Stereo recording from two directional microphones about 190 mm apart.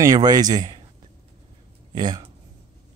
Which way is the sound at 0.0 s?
20° right (ahead or behind).